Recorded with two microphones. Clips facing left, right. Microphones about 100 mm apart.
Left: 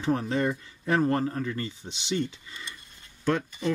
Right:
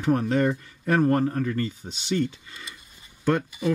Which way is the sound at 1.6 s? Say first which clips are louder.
Right 6 dB; 20° left (ahead or behind).